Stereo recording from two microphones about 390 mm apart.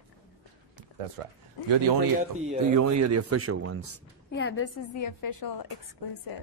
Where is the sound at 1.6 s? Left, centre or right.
Right.